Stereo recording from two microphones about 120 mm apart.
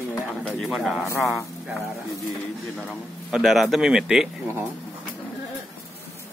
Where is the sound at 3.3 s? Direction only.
Centre (ahead or behind).